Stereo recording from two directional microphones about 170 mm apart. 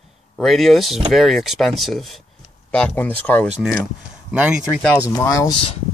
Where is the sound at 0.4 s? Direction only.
Centre (ahead or behind).